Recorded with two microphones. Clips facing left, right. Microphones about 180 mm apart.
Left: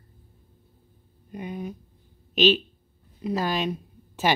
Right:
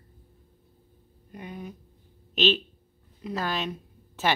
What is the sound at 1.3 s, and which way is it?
Speech, 20° left (ahead or behind).